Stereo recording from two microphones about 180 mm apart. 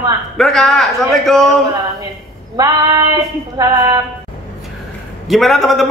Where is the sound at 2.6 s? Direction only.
20° right (ahead or behind).